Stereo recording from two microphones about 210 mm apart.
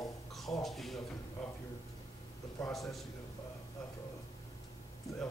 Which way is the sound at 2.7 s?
Centre (ahead or behind).